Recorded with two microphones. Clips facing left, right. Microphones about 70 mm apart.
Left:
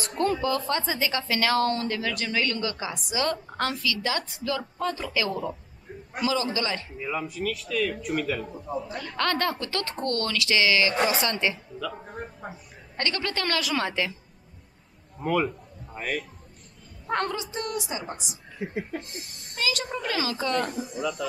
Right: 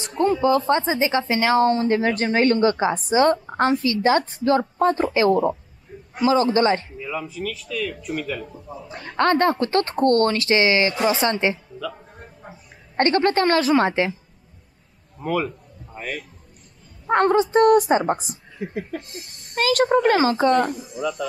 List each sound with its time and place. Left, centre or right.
0.4 s speech: right
7.0 s speech: centre
8.9 s a woman's voice: right
12.1 s speech: left
12.9 s speech: right
15.1 s a man's voice: centre
17.1 s speech: right
18.8 s a sound: centre
19.5 s speech: right
20.6 s speech: centre